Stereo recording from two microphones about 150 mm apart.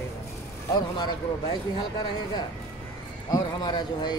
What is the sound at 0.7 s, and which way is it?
Speech, 30° left (ahead or behind).